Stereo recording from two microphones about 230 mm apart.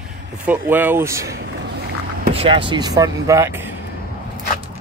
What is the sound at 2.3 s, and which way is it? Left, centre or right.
Speech, right.